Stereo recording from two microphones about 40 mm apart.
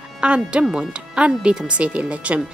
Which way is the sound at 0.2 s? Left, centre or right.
Right.